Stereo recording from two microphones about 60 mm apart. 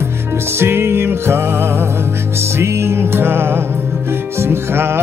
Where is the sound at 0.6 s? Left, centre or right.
Right.